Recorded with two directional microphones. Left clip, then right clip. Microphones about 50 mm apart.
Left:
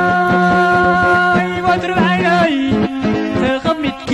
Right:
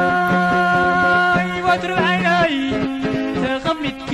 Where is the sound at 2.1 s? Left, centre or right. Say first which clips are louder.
Left 2 dB; left.